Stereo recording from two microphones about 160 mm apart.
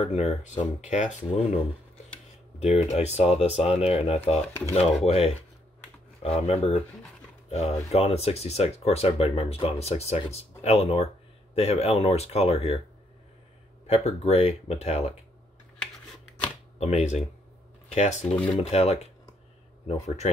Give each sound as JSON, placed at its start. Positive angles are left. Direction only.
{"t": 0.0, "sound": "speech", "side_deg": 45}
{"t": 2.6, "sound": "speech", "side_deg": 40}
{"t": 13.8, "sound": "speech", "side_deg": 40}
{"t": 16.8, "sound": "speech", "side_deg": 45}